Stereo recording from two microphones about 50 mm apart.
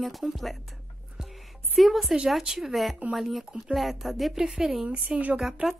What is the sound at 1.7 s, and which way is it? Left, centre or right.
Speech, centre.